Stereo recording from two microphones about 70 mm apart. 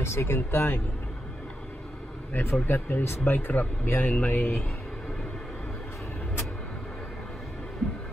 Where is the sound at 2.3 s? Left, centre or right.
Left.